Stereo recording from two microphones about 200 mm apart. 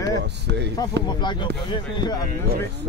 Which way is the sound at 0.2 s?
60° right (ahead or behind).